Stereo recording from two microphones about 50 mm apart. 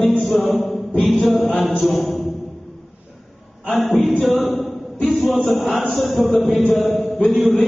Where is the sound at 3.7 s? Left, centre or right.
Centre.